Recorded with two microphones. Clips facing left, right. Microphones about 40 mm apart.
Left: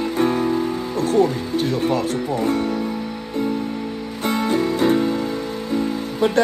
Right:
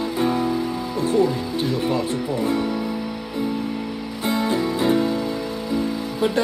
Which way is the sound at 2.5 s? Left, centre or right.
Right.